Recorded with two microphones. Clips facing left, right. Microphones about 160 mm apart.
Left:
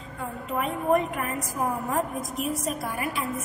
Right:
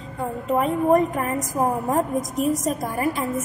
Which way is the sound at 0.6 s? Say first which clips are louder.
Right 5 dB; 35° right (ahead or behind).